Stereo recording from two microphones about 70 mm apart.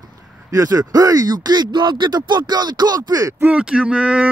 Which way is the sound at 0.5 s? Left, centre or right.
Right.